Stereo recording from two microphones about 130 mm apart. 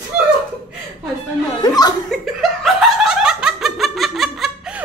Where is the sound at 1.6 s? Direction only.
30° left (ahead or behind).